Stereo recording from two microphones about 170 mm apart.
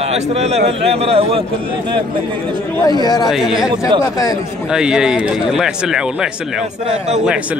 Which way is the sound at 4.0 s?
20° left (ahead or behind).